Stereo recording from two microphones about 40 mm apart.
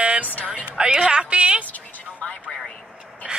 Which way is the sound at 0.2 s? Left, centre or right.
Left.